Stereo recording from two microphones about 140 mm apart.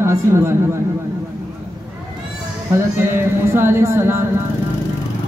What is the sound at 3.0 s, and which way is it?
A woman's voice, 15° right (ahead or behind).